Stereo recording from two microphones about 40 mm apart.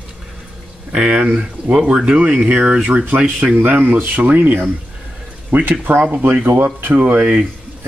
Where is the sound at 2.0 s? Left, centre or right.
Right.